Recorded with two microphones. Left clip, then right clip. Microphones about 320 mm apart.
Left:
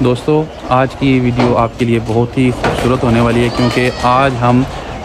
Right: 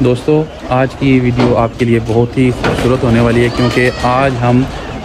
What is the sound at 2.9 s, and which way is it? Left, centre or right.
Speech, centre.